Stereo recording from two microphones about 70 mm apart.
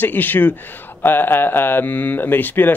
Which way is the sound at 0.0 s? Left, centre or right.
Left.